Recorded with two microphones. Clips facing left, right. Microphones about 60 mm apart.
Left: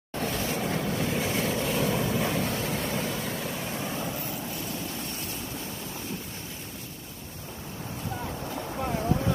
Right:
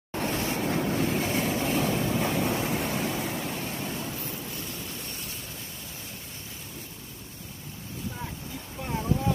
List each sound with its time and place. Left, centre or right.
0.1 s vehicle: centre
3.8 s vehicle: centre